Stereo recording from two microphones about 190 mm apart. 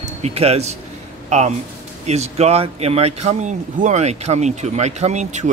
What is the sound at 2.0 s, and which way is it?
Speech, 35° right (ahead or behind).